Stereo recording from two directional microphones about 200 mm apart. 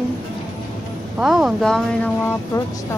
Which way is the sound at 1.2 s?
Centre (ahead or behind).